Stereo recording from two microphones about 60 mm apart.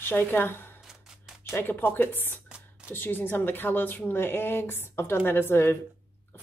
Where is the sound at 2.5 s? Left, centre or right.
Right.